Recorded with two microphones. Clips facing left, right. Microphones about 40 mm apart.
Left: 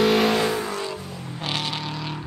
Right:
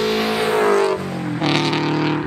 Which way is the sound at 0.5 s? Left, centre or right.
Right.